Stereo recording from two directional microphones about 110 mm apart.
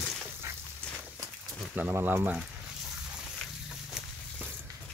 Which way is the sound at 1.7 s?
15° right (ahead or behind).